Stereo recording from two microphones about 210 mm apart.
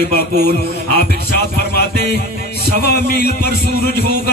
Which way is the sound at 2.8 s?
50° left (ahead or behind).